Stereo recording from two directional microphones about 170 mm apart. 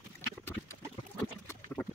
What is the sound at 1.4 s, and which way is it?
Clip-clop, 10° left (ahead or behind).